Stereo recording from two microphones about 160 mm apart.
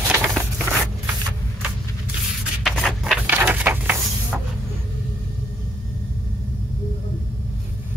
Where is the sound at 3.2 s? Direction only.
10° right (ahead or behind).